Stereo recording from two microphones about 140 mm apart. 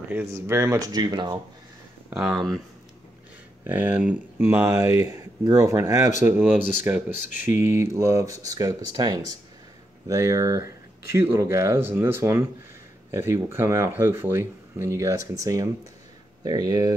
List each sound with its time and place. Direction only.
0.1 s speech: 15° right (ahead or behind); by 1.4 s 30° right (ahead or behind)
2.0 s speech: 5° right (ahead or behind)
3.6 s speech: 15° right (ahead or behind)